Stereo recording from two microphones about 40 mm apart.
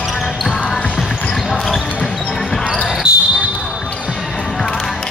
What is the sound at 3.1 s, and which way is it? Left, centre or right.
Basketball bounce, right.